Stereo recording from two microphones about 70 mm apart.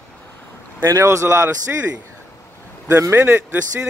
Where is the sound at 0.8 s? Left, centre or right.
Right.